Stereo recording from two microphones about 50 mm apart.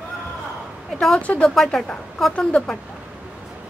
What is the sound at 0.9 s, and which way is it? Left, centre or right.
Speech, centre.